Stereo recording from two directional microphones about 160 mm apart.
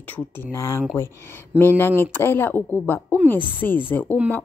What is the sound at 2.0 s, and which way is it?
Speech, 15° left (ahead or behind).